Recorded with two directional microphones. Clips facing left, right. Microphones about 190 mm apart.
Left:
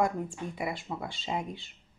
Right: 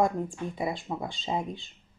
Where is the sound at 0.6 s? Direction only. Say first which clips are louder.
Right 3 dB; 25° right (ahead or behind).